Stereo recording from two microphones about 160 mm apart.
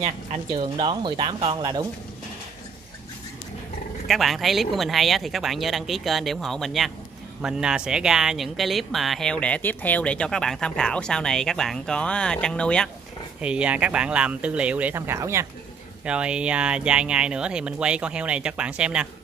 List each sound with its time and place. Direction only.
0.6 s speech: 30° right (ahead or behind)
4.1 s speech: centre (ahead or behind)
13.4 s speech: 5° right (ahead or behind)
16.1 s speech: 5° right (ahead or behind)